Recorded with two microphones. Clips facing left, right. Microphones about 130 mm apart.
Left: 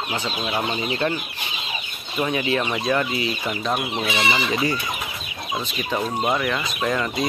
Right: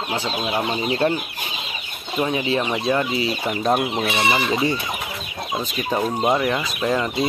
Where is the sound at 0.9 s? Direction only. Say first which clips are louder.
Right 6 dB; 35° right (ahead or behind).